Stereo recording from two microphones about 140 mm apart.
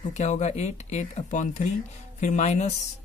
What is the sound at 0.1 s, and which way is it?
Speech, 55° left (ahead or behind).